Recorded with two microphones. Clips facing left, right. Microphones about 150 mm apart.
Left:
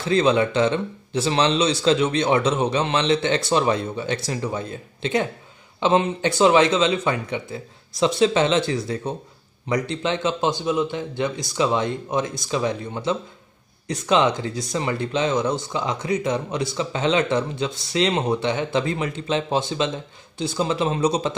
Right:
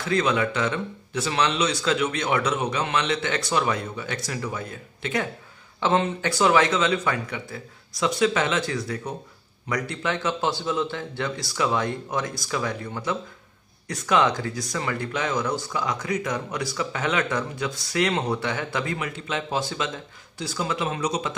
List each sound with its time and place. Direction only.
0.0 s speech: 25° left (ahead or behind)